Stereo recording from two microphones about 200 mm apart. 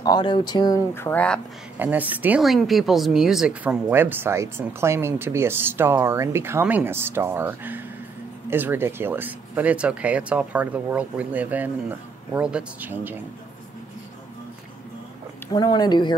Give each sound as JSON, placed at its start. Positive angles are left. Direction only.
{"t": 0.0, "sound": "speech", "side_deg": 20}
{"t": 1.8, "sound": "speech", "side_deg": -10}
{"t": 15.4, "sound": "speech", "side_deg": 20}